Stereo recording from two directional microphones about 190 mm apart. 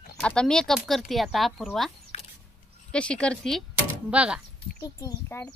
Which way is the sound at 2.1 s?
30° left (ahead or behind).